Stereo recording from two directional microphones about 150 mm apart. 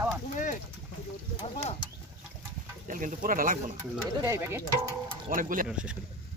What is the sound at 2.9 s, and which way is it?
Speech, 60° right (ahead or behind).